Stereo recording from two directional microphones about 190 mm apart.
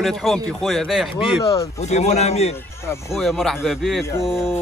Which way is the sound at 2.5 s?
15° left (ahead or behind).